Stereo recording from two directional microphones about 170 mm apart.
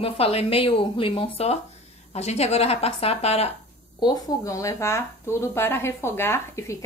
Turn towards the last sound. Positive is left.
turn(degrees=15)  # may be behind; listen again after turning